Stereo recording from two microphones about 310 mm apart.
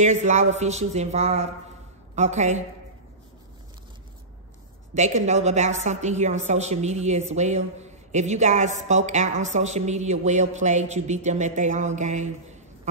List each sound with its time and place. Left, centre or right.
0.0 s speech: right
4.9 s speech: right